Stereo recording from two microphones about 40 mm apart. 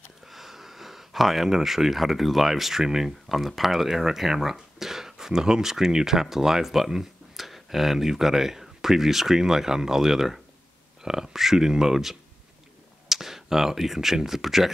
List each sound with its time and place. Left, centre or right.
0.3 s speech: centre